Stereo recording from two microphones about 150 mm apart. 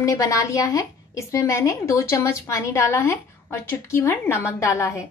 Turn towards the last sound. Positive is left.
turn(degrees=20)  # may be behind; listen again after turning